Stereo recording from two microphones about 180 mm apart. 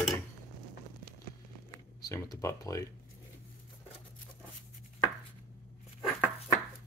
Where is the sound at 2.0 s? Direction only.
20° left (ahead or behind).